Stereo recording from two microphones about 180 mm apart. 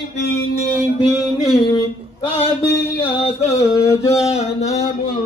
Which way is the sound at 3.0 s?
30° left (ahead or behind).